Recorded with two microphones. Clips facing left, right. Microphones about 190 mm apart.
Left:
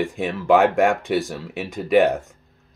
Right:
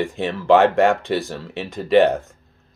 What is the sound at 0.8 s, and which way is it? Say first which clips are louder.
Speech: right 1 dB; 15° left (ahead or behind).